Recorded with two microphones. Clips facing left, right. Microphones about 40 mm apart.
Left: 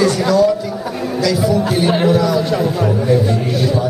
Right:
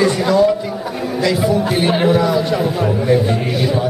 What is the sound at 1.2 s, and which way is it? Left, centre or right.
Speech, right.